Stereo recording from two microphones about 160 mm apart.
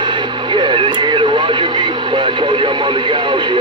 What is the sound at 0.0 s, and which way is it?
Speech, 30° right (ahead or behind).